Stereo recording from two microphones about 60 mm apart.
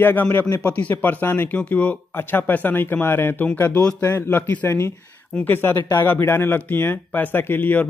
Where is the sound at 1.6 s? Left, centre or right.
Left.